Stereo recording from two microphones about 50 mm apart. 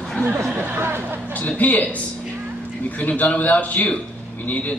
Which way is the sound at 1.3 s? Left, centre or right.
Left.